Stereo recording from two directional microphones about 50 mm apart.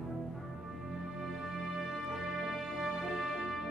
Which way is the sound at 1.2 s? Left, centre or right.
Centre.